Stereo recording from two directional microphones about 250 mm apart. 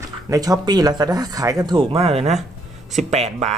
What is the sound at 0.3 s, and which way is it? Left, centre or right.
Speech, centre.